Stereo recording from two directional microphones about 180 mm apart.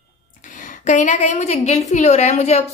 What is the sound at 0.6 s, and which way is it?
A woman's voice, 45° left (ahead or behind).